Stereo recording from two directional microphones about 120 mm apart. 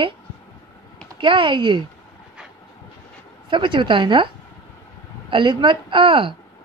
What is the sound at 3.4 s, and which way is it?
Speech, 45° right (ahead or behind).